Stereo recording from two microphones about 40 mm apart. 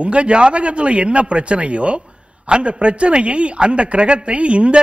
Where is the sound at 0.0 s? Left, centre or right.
Right.